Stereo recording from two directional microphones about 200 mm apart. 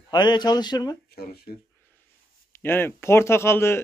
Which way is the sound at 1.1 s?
50° left (ahead or behind).